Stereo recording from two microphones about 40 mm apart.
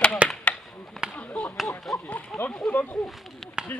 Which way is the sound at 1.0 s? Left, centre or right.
Right.